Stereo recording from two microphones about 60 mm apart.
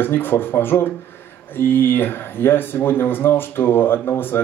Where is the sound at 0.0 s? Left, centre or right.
Left.